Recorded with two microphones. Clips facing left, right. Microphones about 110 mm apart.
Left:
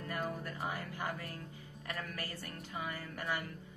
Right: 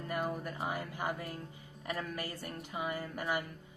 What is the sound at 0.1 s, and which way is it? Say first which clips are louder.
Music: right 4 dB; 15° right (ahead or behind).